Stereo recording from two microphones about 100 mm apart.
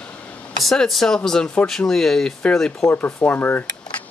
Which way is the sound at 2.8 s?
20° left (ahead or behind).